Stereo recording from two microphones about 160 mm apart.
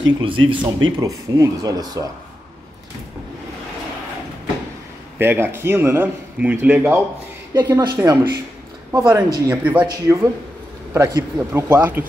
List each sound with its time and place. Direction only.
0.2 s speech: 30° right (ahead or behind)
5.2 s speech: 15° right (ahead or behind)
7.5 s a man's voice: 25° right (ahead or behind)